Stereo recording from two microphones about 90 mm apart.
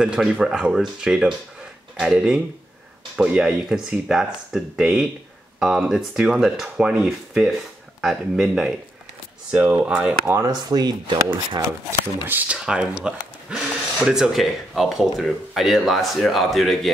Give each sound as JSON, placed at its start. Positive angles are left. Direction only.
{"t": 0.0, "sound": "speech", "side_deg": -10}
{"t": 9.5, "sound": "speech", "side_deg": -20}
{"t": 10.4, "sound": "speech", "side_deg": -50}
{"t": 12.3, "sound": "speech", "side_deg": -20}
{"t": 12.5, "sound": "speech", "side_deg": -10}